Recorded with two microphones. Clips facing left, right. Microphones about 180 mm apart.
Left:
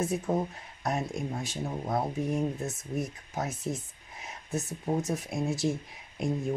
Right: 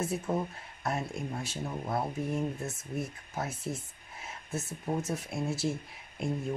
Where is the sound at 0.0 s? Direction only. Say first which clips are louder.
Left 3 dB; 20° left (ahead or behind).